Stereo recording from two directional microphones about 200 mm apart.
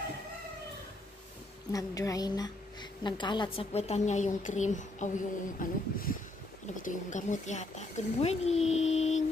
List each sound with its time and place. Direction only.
1.7 s a woman's voice: 15° left (ahead or behind); by 9.2 s 35° left (ahead or behind)